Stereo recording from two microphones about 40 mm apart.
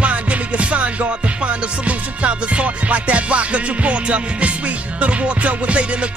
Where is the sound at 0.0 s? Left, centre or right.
Right.